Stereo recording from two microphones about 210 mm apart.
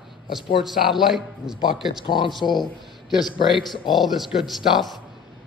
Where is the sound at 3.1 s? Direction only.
Centre (ahead or behind).